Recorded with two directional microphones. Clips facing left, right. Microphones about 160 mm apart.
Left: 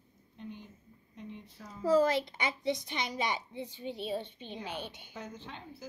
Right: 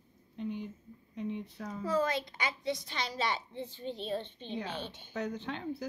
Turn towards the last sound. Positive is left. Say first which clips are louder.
# right 9 dB
turn(degrees=-75)  # may be behind; listen again after turning